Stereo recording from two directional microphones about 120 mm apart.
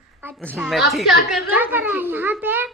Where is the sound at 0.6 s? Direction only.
Centre (ahead or behind).